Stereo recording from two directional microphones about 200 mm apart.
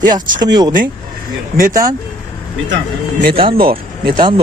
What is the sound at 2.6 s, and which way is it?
Speech, 60° right (ahead or behind).